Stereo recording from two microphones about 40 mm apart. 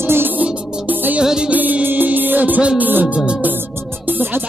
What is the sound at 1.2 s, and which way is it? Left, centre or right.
Music, centre.